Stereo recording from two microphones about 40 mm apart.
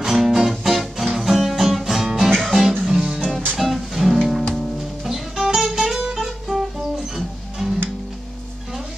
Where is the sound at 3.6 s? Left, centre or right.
Centre.